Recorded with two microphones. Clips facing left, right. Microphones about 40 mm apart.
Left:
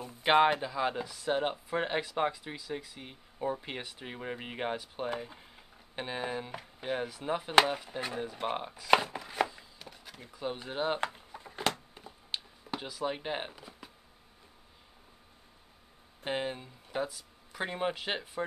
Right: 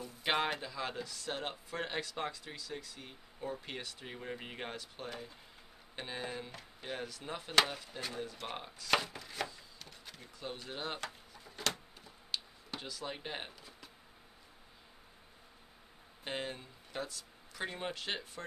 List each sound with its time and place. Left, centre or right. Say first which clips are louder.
0.0 s speech: left 9 dB; left
11.0 s a sound: left 8 dB; left
12.8 s speech: left 8 dB; centre
16.3 s speech: left 6 dB; centre